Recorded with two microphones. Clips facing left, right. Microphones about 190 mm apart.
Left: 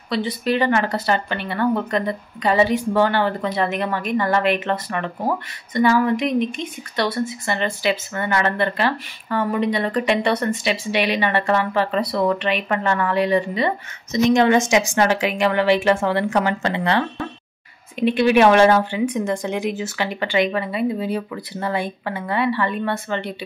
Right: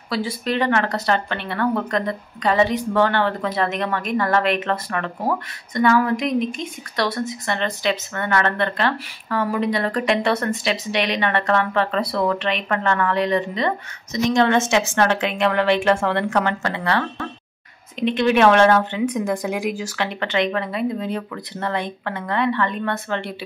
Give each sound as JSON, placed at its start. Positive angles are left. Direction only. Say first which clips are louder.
{"t": 0.1, "sound": "speech", "louder": "left 2 dB", "side_deg": 0}
{"t": 16.6, "sound": "speech", "louder": "left 2 dB", "side_deg": 20}
{"t": 17.9, "sound": "speech", "louder": "left 2 dB", "side_deg": 5}
{"t": 20.2, "sound": "speech", "louder": "left 2 dB", "side_deg": 5}